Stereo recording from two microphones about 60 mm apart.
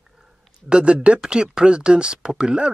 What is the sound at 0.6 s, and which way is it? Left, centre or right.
A man's voice, centre.